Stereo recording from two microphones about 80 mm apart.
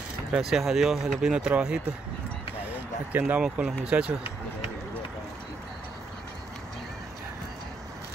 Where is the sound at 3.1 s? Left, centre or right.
Right.